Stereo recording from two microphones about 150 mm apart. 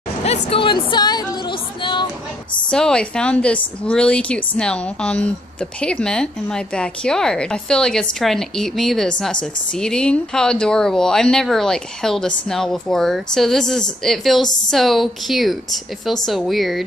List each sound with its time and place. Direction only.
0.2 s speech: 40° left (ahead or behind)
0.8 s music: 30° left (ahead or behind)
1.8 s a sound: 30° left (ahead or behind)
2.7 s a woman's voice: 5° left (ahead or behind)